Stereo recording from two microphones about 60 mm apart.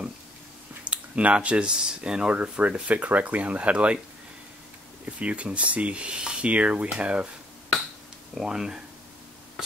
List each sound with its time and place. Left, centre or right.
0.8 s speech: right
5.0 s speech: right
8.4 s speech: centre